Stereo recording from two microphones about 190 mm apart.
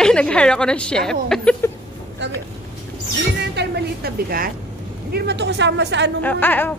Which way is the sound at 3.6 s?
55° right (ahead or behind).